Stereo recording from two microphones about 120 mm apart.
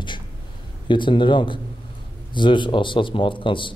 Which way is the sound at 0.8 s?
40° left (ahead or behind).